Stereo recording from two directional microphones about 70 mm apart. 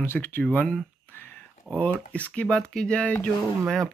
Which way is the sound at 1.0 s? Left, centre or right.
Left.